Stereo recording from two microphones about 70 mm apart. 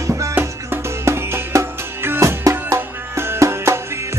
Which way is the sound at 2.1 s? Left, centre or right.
Right.